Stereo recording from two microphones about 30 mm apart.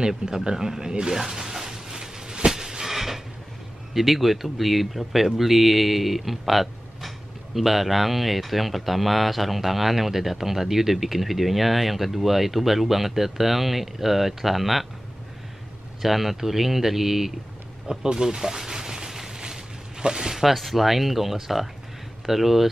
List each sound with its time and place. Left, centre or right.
0.2 s speech: centre
1.0 s a sound: centre
3.9 s speech: centre
16.0 s speech: centre
17.8 s speech: right
18.7 s a sound: right
20.4 s speech: centre